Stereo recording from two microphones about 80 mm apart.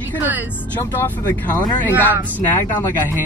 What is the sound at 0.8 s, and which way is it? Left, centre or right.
Speech, left.